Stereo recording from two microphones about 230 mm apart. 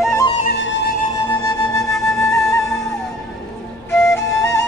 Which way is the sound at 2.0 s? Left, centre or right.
Centre.